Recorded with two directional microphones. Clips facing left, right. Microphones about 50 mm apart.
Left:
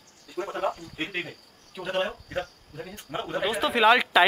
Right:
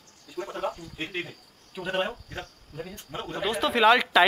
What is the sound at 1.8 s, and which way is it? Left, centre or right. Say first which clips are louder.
Speech: even; centre.